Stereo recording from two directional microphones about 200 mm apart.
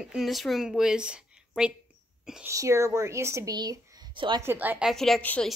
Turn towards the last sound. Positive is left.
turn(degrees=5)  # may be behind; listen again after turning